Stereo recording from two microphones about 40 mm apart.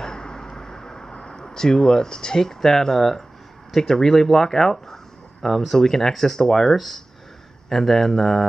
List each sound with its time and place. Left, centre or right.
0.0 s vehicle: centre
1.1 s speech: centre